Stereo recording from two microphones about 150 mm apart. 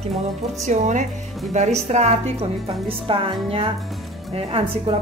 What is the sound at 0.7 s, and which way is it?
Speech, 55° right (ahead or behind).